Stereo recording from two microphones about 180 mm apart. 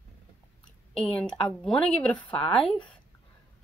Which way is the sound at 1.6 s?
5° left (ahead or behind).